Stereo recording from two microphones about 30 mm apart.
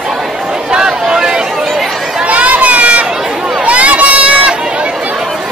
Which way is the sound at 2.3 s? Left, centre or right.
Right.